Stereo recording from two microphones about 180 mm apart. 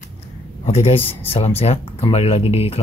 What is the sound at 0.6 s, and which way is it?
Speech, 35° left (ahead or behind).